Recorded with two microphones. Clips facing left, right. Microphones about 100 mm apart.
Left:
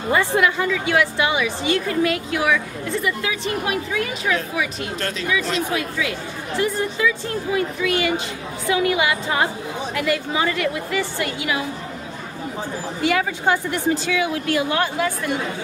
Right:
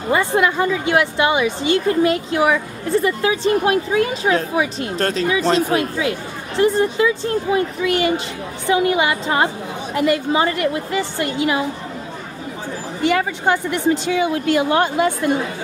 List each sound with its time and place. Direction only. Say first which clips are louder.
0.1 s a woman's voice: right 2 dB; 25° right (ahead or behind)
14.1 s a woman's voice: right 4 dB; 35° right (ahead or behind)